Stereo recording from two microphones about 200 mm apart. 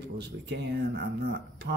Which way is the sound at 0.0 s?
55° right (ahead or behind).